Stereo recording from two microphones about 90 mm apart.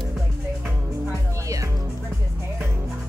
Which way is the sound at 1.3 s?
35° right (ahead or behind).